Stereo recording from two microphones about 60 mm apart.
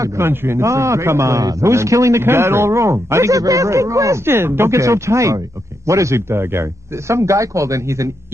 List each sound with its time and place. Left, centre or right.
0.2 s speech: right
0.6 s a man's voice: right
2.2 s a man's voice: right
4.3 s a man's voice: right